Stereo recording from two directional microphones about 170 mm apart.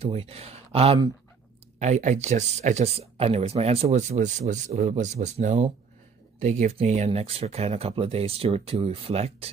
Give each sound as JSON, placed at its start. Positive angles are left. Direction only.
{"t": 0.0, "sound": "speech", "side_deg": -35}